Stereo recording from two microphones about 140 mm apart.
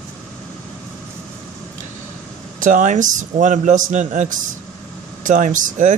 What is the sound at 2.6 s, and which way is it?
A man's voice, 70° right (ahead or behind).